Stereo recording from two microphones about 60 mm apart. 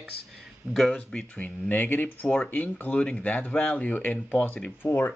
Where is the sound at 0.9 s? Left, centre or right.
Left.